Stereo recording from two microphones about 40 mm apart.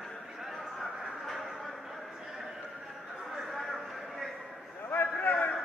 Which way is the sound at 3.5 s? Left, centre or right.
Centre.